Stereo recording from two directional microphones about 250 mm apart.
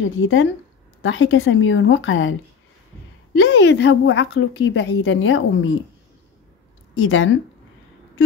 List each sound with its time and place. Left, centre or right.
0.0 s a woman's voice: left
3.3 s a woman's voice: left
7.0 s a woman's voice: left